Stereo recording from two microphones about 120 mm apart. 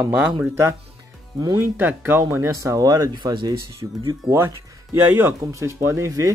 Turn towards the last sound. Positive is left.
turn(degrees=-25)  # may be behind; listen again after turning